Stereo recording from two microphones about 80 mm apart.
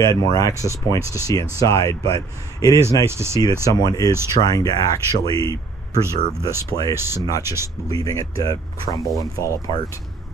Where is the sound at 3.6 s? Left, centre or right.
Left.